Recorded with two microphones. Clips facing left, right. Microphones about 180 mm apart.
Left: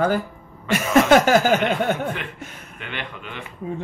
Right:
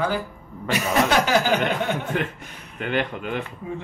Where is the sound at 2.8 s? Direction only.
45° right (ahead or behind).